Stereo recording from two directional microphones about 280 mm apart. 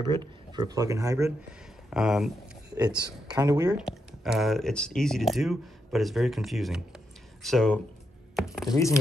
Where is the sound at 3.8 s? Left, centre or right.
Centre.